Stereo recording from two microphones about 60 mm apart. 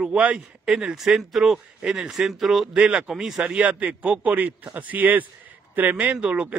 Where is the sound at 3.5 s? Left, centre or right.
Right.